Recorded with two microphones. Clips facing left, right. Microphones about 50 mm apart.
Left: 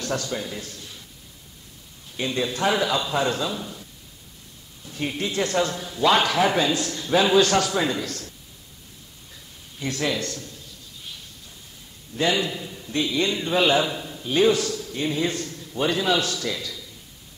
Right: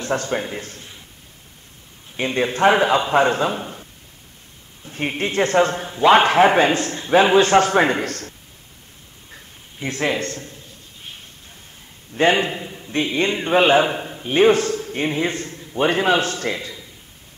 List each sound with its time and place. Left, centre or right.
0.0 s a man's voice: right
2.1 s a man's voice: right
4.8 s a man's voice: right
9.3 s a sound: right
12.2 s a man's voice: right